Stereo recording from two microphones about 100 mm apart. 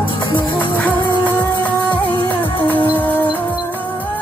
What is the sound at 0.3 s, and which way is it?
Music, 55° left (ahead or behind).